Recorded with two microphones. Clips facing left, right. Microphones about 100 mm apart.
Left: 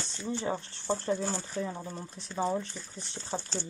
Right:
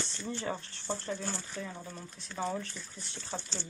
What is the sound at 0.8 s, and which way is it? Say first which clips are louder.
Speech: left 6 dB; 40° left (ahead or behind).